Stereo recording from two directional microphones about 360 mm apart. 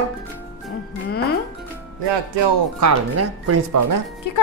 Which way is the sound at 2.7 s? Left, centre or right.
Right.